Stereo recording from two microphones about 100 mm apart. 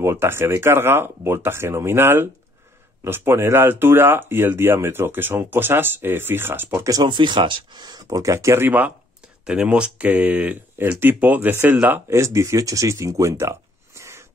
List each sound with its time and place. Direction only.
0.0 s speech: 25° right (ahead or behind)
6.9 s speech: 45° right (ahead or behind); by 8.9 s 20° right (ahead or behind)
9.4 s speech: 10° right (ahead or behind); by 14.2 s 30° right (ahead or behind)